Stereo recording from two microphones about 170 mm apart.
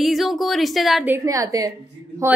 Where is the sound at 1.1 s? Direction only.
20° right (ahead or behind).